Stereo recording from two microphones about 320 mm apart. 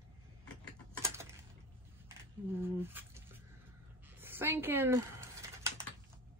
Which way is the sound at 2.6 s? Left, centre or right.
Centre.